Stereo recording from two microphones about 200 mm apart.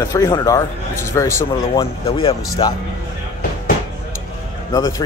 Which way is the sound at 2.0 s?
25° left (ahead or behind).